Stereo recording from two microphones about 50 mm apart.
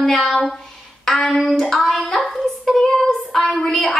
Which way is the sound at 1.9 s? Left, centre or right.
Centre.